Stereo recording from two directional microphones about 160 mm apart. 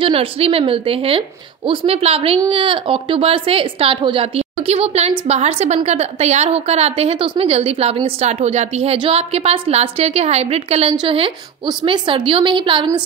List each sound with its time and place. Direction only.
0.0 s a woman's voice: 35° right (ahead or behind)